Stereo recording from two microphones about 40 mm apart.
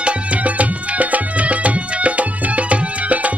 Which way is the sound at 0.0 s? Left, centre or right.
Right.